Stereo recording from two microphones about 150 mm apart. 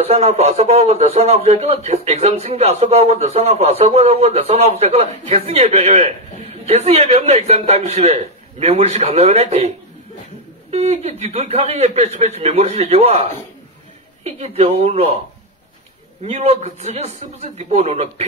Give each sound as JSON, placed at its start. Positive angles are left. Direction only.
{"t": 0.0, "sound": "a man's voice", "side_deg": -45}
{"t": 10.7, "sound": "a man's voice", "side_deg": -45}
{"t": 16.3, "sound": "a man's voice", "side_deg": -45}